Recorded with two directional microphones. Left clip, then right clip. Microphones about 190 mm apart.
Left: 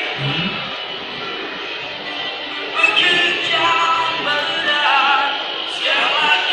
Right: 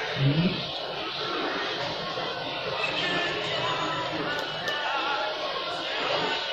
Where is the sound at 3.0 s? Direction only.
45° left (ahead or behind).